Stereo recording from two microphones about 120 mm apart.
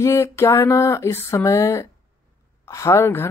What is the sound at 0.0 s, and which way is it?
Speech, 20° left (ahead or behind).